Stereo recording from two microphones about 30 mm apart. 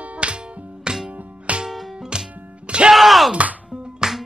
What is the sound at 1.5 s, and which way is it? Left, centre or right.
Music, right.